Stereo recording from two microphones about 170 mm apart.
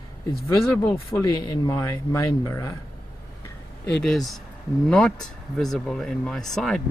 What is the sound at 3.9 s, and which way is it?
Speech, centre (ahead or behind).